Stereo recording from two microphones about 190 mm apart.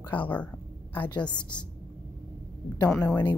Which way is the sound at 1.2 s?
5° left (ahead or behind).